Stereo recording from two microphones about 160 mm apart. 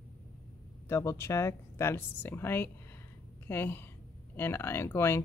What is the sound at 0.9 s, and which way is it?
Speech, 15° left (ahead or behind).